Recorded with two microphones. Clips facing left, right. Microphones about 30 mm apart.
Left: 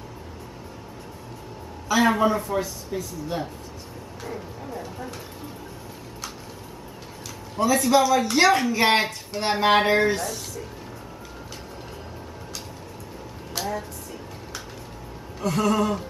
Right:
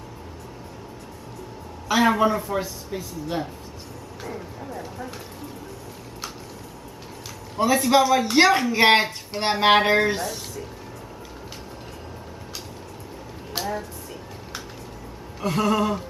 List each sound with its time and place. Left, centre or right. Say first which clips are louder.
1.9 s speech: right 1 dB; right
2.3 s speech: even; centre
2.6 s speech: left 1 dB; centre
4.3 s music: even; centre
7.6 s speech: right 1 dB; right
8.5 s speech: even; centre
8.7 s speech: right 3 dB; right
9.8 s speech: right 1 dB; centre
10.0 s speech: left 1 dB; centre
13.6 s a sound: right 1 dB; centre
15.4 s speech: even; centre